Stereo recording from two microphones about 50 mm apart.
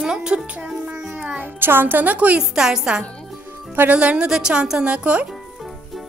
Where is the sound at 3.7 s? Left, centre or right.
Right.